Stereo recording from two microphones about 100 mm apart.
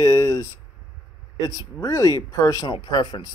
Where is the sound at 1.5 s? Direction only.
30° left (ahead or behind).